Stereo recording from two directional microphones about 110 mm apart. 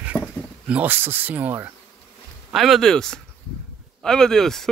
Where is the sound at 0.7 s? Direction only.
15° right (ahead or behind).